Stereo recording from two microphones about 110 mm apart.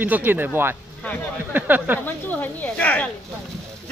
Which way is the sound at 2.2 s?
15° left (ahead or behind).